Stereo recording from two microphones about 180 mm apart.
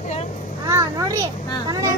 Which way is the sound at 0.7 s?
20° right (ahead or behind).